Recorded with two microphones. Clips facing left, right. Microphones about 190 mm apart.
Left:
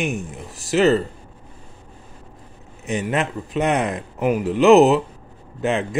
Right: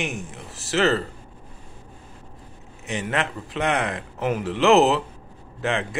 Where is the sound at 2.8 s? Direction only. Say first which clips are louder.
Left 4 dB; 20° left (ahead or behind).